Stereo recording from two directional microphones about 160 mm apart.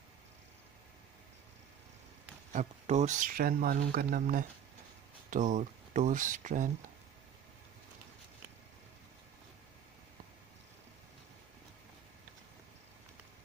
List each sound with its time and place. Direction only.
2.5 s speech: 45° right (ahead or behind)